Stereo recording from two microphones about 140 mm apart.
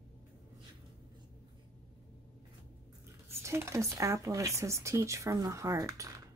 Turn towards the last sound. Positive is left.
turn(degrees=-25)  # may be behind; listen again after turning